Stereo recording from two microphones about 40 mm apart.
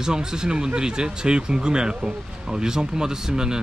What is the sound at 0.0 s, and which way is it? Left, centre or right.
Speech, centre.